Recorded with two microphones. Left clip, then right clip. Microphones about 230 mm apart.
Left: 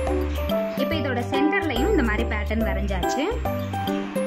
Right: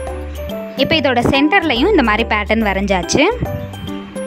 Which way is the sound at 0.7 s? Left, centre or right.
Right.